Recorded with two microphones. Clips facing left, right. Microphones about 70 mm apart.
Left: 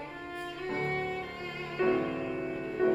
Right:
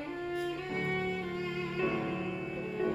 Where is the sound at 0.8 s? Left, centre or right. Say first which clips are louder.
Left 3 dB; centre.